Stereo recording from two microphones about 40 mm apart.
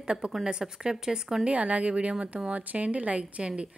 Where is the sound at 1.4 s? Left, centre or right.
Right.